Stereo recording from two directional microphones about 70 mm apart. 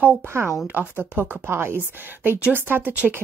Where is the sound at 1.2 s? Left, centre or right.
Right.